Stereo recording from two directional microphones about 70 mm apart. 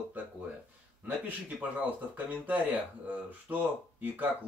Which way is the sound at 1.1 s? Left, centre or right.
Right.